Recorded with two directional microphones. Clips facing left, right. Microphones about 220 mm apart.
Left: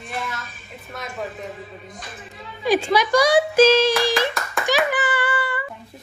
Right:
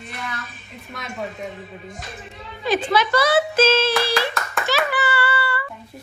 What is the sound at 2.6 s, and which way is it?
Speech, 10° left (ahead or behind).